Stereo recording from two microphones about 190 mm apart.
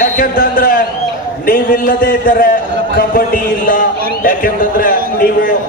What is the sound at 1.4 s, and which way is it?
A man's voice, 50° left (ahead or behind).